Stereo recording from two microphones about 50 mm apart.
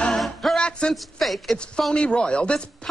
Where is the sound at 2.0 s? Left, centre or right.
Left.